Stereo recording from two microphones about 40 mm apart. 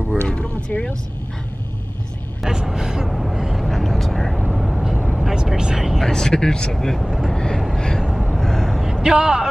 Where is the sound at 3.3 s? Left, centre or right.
Centre.